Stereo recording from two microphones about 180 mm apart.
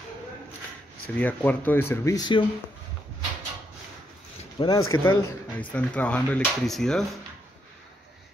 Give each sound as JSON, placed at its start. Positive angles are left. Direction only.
{"t": 1.0, "sound": "speech", "side_deg": 10}
{"t": 4.6, "sound": "speech", "side_deg": 25}
{"t": 4.9, "sound": "speech", "side_deg": 15}